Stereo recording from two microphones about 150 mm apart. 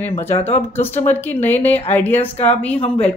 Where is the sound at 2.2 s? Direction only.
45° left (ahead or behind).